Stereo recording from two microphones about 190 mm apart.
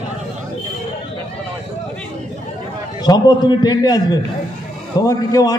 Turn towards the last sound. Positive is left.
turn(degrees=20)  # may be behind; listen again after turning